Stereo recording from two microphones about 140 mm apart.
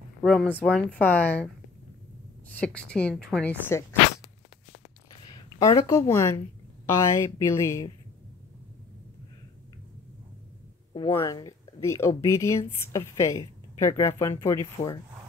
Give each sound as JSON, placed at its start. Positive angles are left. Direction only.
{"t": 0.2, "sound": "a woman's voice", "side_deg": 5}
{"t": 2.6, "sound": "a woman's voice", "side_deg": 10}
{"t": 5.3, "sound": "speech", "side_deg": 30}
{"t": 10.9, "sound": "a sound", "side_deg": 40}
{"t": 11.1, "sound": "speech", "side_deg": 25}